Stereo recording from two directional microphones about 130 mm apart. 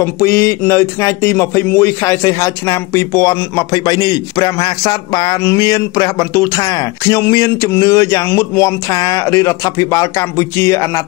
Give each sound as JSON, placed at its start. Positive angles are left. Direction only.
{"t": 0.0, "sound": "speech", "side_deg": 20}